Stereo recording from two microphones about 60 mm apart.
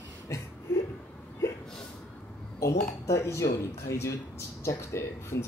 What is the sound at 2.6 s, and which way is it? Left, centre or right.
Speech, left.